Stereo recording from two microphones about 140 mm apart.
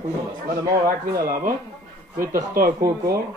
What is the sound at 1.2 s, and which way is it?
Speech, 90° right.